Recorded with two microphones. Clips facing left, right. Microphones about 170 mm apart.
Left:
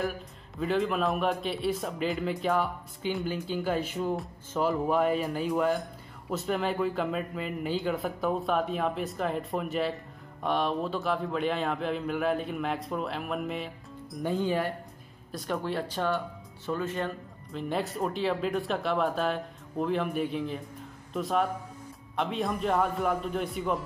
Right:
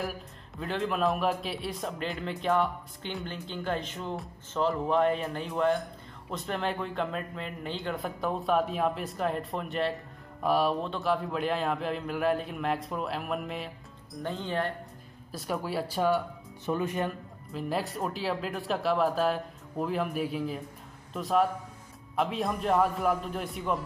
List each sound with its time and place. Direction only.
0.6 s a man's voice: centre (ahead or behind)
15.3 s a man's voice: 5° right (ahead or behind)